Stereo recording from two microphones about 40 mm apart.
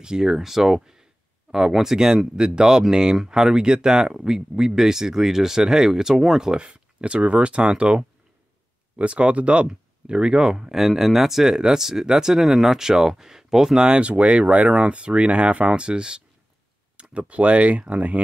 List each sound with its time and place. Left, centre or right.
0.0 s speech: centre
6.5 s speech: right
10.8 s speech: centre
12.4 s speech: centre
13.7 s speech: right